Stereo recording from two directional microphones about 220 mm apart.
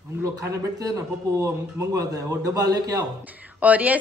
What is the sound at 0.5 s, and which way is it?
A woman's voice, 15° right (ahead or behind).